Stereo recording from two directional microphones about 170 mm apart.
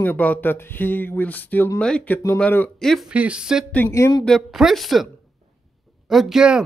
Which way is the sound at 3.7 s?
15° left (ahead or behind).